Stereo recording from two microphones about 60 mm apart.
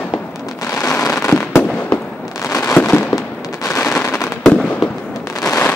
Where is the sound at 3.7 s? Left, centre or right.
Left.